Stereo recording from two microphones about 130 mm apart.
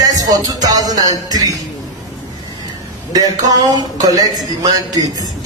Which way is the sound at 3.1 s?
30° right (ahead or behind).